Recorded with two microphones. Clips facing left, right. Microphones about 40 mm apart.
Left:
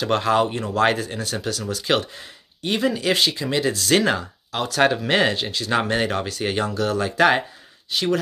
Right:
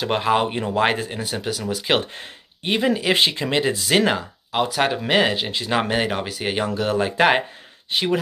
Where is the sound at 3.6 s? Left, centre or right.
Centre.